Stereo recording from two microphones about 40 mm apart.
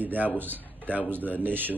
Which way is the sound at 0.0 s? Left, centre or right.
Right.